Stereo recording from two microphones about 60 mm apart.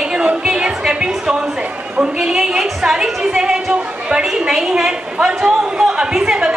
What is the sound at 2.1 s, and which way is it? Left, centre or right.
A woman's voice, centre.